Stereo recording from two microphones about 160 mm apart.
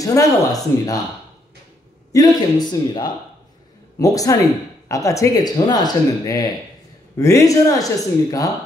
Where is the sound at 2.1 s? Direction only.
25° left (ahead or behind).